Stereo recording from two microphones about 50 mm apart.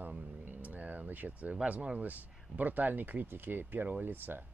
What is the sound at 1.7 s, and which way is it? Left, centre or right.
Speech, right.